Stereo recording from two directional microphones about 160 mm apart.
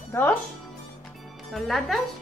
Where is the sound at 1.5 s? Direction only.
Centre (ahead or behind).